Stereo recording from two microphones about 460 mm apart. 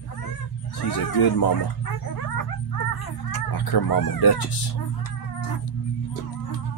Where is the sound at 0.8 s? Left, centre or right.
Left.